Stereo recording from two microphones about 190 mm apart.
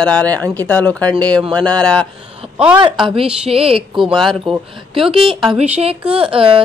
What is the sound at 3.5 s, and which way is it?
Speech, 30° right (ahead or behind).